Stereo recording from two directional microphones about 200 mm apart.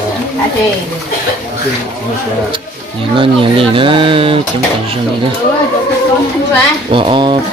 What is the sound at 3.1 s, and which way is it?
Speech, 25° right (ahead or behind).